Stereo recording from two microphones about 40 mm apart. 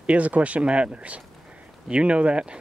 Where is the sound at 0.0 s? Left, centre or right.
Right.